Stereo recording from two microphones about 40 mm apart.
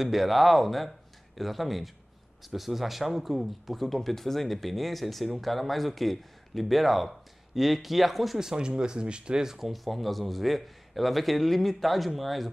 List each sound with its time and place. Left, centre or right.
0.0 s speech: centre
8.4 s speech: centre
9.7 s speech: centre